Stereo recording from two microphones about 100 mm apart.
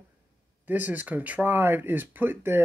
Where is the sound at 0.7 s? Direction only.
15° right (ahead or behind).